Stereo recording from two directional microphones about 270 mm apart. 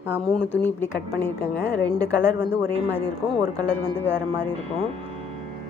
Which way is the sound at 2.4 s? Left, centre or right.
Left.